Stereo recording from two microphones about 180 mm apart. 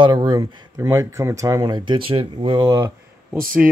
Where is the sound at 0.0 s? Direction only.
25° right (ahead or behind).